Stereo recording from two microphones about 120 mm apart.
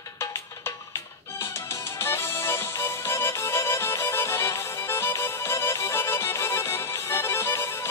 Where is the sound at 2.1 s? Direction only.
20° left (ahead or behind).